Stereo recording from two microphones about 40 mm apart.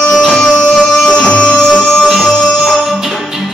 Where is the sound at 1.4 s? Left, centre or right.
Centre.